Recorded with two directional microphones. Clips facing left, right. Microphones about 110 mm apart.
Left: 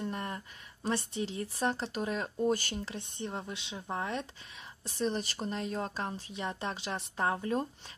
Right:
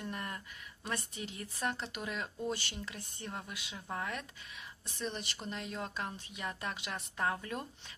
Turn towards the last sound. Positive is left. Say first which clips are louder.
# left 9 dB
turn(degrees=30)  # may be behind; listen again after turning